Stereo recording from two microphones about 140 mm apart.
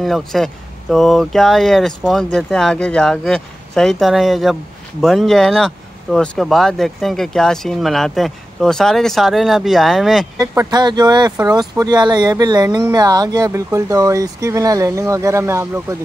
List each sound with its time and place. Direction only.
0.0 s speech: centre (ahead or behind)
10.4 s speech: 25° right (ahead or behind)